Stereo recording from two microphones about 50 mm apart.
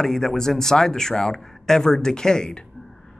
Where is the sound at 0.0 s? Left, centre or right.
Centre.